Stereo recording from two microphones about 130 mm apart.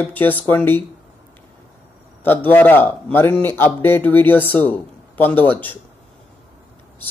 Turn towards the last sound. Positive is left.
turn(degrees=15)  # may be behind; listen again after turning